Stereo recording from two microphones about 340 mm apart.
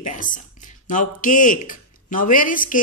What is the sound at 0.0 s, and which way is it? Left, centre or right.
A woman's voice, left.